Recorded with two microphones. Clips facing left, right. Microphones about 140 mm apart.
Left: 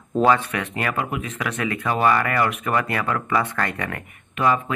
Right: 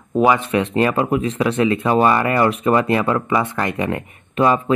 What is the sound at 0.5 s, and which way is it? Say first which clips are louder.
Speech: right 8 dB; 25° right (ahead or behind).